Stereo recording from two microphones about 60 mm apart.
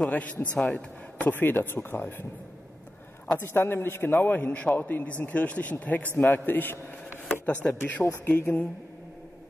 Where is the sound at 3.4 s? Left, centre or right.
Left.